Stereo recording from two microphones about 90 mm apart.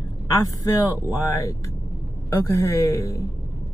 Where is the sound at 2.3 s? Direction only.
40° left (ahead or behind).